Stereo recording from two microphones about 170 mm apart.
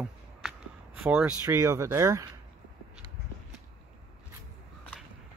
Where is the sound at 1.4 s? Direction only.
20° right (ahead or behind).